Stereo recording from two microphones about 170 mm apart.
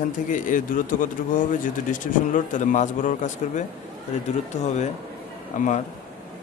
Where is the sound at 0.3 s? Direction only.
50° left (ahead or behind).